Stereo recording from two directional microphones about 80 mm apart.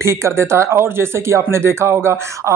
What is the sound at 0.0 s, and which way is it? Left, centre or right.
Speech, right.